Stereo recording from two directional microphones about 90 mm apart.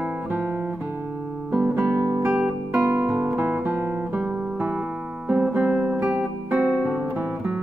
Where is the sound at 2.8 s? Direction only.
25° right (ahead or behind).